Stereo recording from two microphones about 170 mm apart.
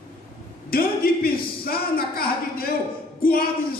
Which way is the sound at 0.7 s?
60° left (ahead or behind).